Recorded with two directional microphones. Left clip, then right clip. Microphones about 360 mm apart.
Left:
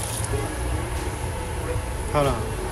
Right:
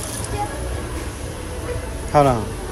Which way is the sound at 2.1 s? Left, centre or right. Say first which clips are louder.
Right 8 dB; centre.